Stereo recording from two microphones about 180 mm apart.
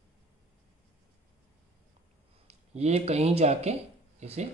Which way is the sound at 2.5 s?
35° right (ahead or behind).